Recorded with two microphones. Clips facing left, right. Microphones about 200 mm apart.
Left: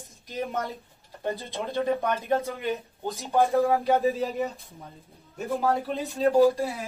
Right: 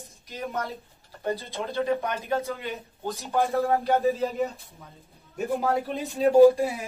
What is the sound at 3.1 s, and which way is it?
Speech, 15° left (ahead or behind).